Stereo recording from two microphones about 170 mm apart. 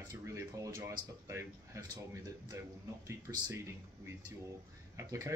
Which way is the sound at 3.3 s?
15° right (ahead or behind).